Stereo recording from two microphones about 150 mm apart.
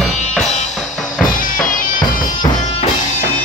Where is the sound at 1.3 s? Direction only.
65° left (ahead or behind).